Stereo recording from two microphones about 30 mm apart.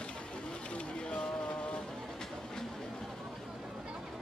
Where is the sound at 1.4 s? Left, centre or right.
Left.